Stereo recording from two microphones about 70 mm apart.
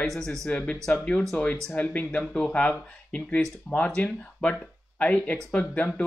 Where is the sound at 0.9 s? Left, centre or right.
Centre.